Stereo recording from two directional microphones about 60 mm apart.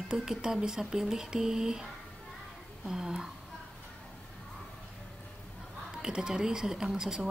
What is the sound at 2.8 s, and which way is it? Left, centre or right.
Speech, centre.